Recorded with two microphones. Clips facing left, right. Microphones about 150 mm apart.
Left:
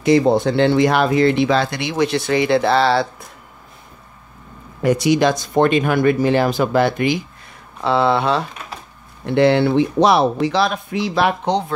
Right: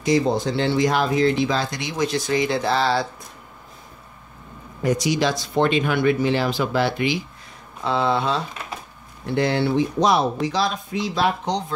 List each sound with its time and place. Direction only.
0.0 s speech: 60° left (ahead or behind)
4.8 s speech: 60° left (ahead or behind)
7.8 s speech: 70° left (ahead or behind)